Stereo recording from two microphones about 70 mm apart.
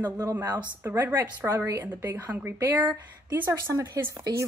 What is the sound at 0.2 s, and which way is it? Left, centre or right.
Speech, right.